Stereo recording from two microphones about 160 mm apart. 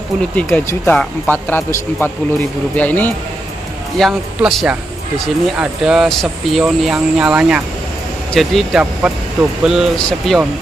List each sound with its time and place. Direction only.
0.4 s speech: 10° left (ahead or behind)